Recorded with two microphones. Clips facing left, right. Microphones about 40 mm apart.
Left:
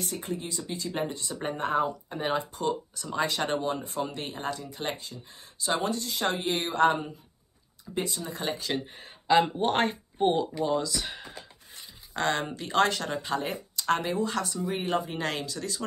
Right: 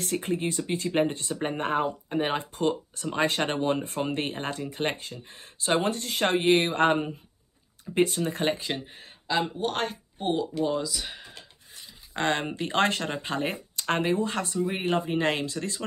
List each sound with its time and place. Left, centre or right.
0.0 s speech: right
1.8 s speech: right
8.7 s speech: centre
9.6 s speech: left
10.6 s speech: centre
12.1 s speech: right